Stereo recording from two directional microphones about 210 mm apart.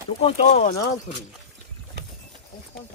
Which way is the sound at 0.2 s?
35° left (ahead or behind).